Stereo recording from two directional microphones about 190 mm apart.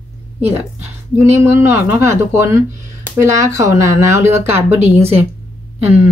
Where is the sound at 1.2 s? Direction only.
15° right (ahead or behind).